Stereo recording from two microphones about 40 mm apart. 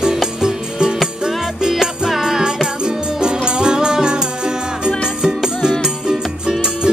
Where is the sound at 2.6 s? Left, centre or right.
Right.